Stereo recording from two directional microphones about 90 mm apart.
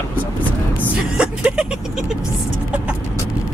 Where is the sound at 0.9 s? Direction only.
10° right (ahead or behind).